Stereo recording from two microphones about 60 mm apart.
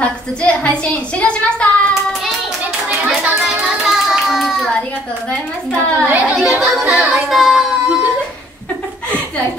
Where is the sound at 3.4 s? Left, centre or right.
Centre.